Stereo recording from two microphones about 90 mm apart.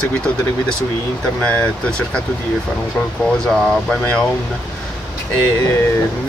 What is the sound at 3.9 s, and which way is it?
Speech, 20° left (ahead or behind).